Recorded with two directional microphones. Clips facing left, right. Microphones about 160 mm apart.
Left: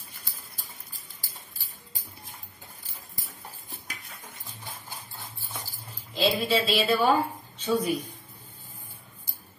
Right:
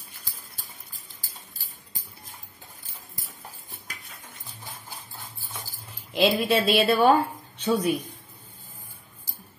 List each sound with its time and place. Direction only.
6.1 s speech: 60° right (ahead or behind)